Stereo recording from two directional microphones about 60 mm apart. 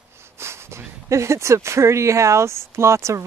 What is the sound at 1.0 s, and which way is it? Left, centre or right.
Speech, right.